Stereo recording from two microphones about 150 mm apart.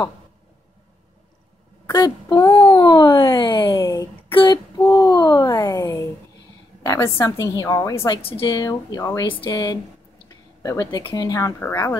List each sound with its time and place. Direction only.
1.9 s a sound: 25° left (ahead or behind)
2.7 s speech: 25° left (ahead or behind)
3.8 s a woman's voice: 20° left (ahead or behind)
4.3 s female singing: 35° left (ahead or behind)
4.8 s babbling: 30° left (ahead or behind)
6.8 s a woman's voice: 20° left (ahead or behind)
8.2 s a woman's voice: 35° left (ahead or behind)
9.3 s a woman's voice: 35° left (ahead or behind)
11.6 s speech: 15° left (ahead or behind)